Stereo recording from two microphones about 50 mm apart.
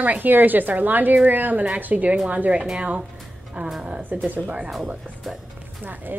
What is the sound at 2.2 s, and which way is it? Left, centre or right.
Music, right.